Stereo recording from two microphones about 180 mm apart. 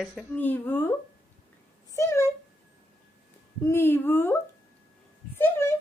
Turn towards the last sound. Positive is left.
turn(degrees=15)  # may be behind; listen again after turning